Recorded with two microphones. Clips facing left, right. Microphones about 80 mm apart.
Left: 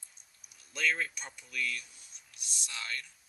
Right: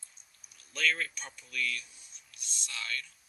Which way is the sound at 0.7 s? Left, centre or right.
Centre.